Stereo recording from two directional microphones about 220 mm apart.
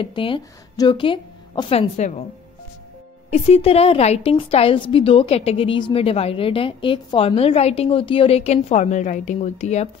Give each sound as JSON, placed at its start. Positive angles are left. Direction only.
{"t": 0.0, "sound": "a woman's voice", "side_deg": 25}
{"t": 3.3, "sound": "a woman's voice", "side_deg": 25}